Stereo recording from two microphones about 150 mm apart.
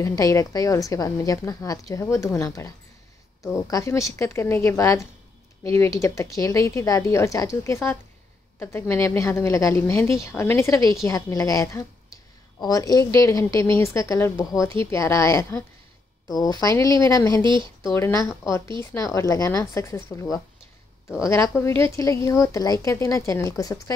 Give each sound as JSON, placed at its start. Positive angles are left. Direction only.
{"t": 0.0, "sound": "a woman's voice", "side_deg": 20}
{"t": 17.4, "sound": "speech", "side_deg": -30}
{"t": 17.9, "sound": "a woman's voice", "side_deg": 20}